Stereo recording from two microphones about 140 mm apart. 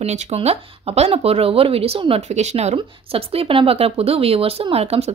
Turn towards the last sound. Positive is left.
turn(degrees=-45)  # may be behind; listen again after turning